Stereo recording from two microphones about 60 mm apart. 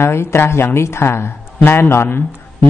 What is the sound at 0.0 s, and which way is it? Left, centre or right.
A man's voice, left.